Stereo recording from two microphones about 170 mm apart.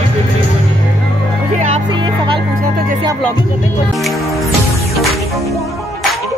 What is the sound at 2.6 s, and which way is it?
Music, 55° right (ahead or behind).